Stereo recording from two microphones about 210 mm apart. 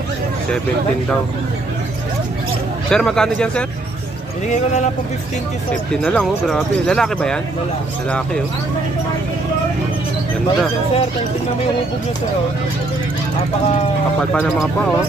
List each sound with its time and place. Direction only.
2.9 s speech: 5° left (ahead or behind)
5.9 s speech: centre (ahead or behind)